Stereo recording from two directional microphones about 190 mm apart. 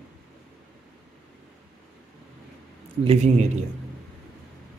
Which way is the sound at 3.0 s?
30° right (ahead or behind).